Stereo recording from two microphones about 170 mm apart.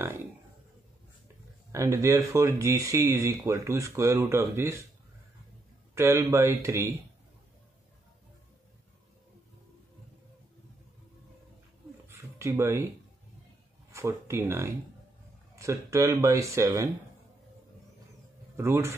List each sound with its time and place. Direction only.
1.7 s speech: 15° right (ahead or behind)
5.9 s speech: 15° right (ahead or behind)
12.1 s a sound: 15° right (ahead or behind)
13.9 s speech: 15° right (ahead or behind)
18.6 s speech: 15° right (ahead or behind)